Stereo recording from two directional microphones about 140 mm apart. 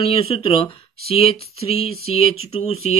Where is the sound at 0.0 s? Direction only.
40° left (ahead or behind).